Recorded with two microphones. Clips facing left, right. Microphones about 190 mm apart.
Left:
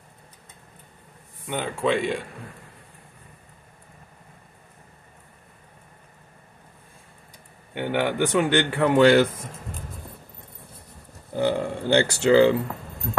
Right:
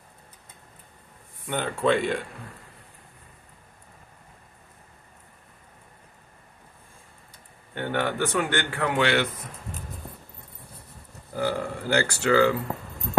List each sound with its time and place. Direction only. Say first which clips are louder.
1.5 s speech: even; centre (ahead or behind)
7.7 s speech: left 3 dB; 15° left (ahead or behind)
8.9 s speech: left 8 dB; 40° left (ahead or behind)
11.3 s speech: left 4 dB; 20° left (ahead or behind)